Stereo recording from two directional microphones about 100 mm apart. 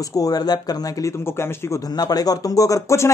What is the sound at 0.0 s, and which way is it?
Speech, 35° left (ahead or behind).